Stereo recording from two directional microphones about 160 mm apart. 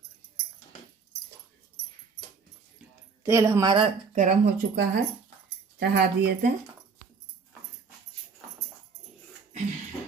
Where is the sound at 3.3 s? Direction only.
20° right (ahead or behind).